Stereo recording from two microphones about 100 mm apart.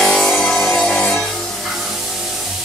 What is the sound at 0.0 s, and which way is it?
Music, centre (ahead or behind).